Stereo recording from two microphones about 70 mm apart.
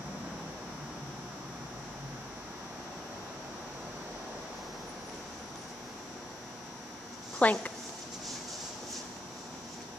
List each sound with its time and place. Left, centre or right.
7.4 s a woman's voice: left